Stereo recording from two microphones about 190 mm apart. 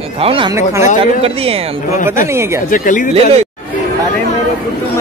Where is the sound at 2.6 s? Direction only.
45° left (ahead or behind).